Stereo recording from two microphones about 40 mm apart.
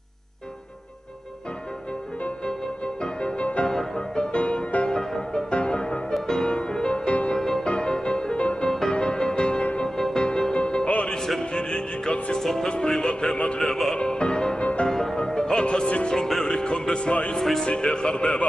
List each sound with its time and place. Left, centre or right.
3.0 s music: left
3.6 s music: centre
7.3 s music: centre
8.6 s music: centre
9.8 s music: centre; by 11.1 s left
11.1 s music: centre
11.7 s music: left
12.4 s music: centre
14.6 s music: left
14.9 s music: centre
17.4 s music: centre
17.6 s music: left